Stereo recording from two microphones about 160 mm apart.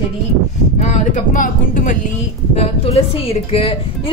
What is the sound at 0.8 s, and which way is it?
Speech, 50° left (ahead or behind).